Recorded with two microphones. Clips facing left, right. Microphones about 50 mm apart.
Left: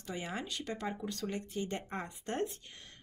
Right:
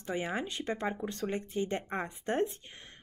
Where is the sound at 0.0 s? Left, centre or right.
Right.